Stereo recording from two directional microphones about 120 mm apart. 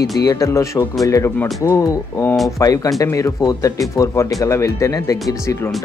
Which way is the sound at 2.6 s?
30° left (ahead or behind).